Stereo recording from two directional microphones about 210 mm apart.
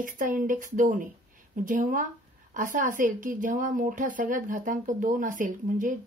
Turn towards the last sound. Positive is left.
turn(degrees=-40)  # may be behind; listen again after turning